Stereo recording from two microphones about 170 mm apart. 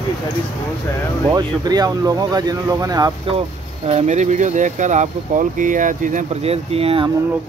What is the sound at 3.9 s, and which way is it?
Speech, 40° right (ahead or behind).